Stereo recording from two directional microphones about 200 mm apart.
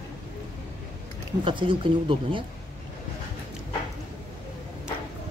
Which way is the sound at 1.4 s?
25° right (ahead or behind).